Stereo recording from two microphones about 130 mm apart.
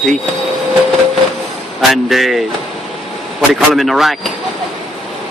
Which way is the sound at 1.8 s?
Centre (ahead or behind).